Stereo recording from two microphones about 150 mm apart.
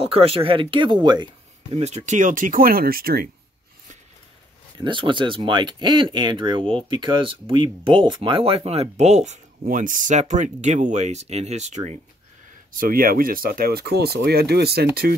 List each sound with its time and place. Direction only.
0.0 s speech: 40° right (ahead or behind)
1.7 s speech: 45° right (ahead or behind); by 3.3 s 80° right
4.7 s speech: 35° right (ahead or behind); by 11.9 s 50° right (ahead or behind)
12.7 s speech: 70° right (ahead or behind); by 15.1 s 90° right